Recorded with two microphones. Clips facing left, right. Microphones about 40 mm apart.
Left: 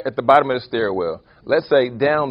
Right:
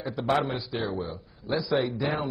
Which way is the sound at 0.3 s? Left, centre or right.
Left.